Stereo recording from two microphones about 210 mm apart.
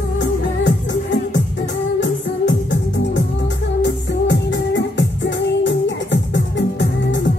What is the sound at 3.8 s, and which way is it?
Music, 60° left (ahead or behind).